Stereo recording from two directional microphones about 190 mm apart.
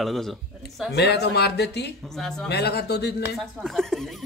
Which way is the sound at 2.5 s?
60° left (ahead or behind).